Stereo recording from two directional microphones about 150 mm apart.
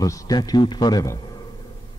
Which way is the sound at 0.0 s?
25° left (ahead or behind).